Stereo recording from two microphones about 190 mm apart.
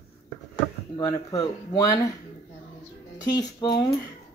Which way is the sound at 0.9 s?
15° left (ahead or behind).